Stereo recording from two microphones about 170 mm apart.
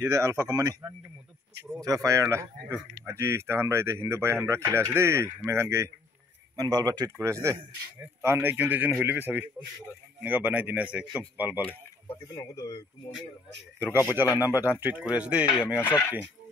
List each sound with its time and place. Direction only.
0.0 s a man's voice: 15° right (ahead or behind)
11.6 s speech: 10° left (ahead or behind)
14.1 s speech: 10° right (ahead or behind)
15.7 s speech: 15° left (ahead or behind)